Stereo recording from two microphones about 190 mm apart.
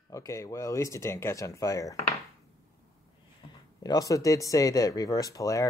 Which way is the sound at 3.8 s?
20° left (ahead or behind).